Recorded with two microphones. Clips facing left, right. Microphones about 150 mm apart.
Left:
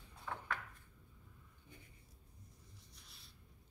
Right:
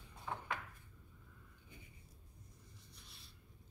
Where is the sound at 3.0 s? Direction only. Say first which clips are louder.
Right 2 dB; centre (ahead or behind).